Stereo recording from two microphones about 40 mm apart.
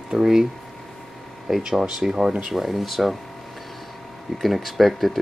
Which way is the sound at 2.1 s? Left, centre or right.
Right.